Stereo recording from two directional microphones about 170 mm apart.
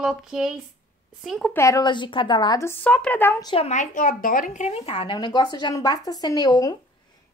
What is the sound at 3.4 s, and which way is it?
A woman's voice, 35° left (ahead or behind).